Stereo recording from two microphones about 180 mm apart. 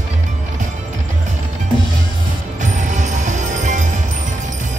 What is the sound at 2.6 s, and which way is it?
Music, 45° right (ahead or behind).